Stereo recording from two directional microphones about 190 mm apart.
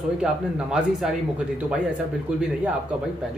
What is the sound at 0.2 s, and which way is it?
Speech, 5° right (ahead or behind).